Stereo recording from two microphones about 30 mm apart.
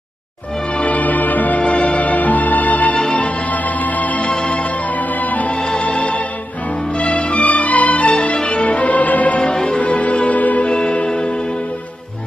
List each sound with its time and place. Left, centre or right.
0.8 s music: left
1.6 s music: left
4.3 s music: left
5.2 s music: left
5.8 s music: left
9.4 s music: left
9.8 s music: left
10.7 s music: left